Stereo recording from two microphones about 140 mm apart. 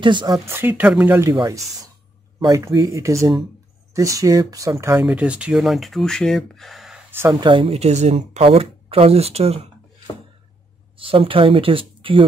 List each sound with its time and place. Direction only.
0.0 s speech: 35° right (ahead or behind)
0.5 s speech: 15° right (ahead or behind)
1.3 s speech: 25° right (ahead or behind)
5.0 s speech: 10° right (ahead or behind)
7.2 s speech: 30° right (ahead or behind)
11.0 s speech: 40° right (ahead or behind)